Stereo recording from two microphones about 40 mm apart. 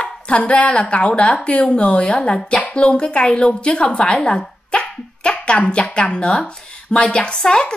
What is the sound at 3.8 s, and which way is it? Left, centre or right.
Dog, left.